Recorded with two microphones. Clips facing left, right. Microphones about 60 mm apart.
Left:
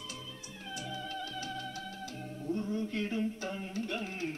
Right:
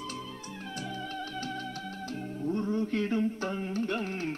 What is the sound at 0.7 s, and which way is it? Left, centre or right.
Music, right.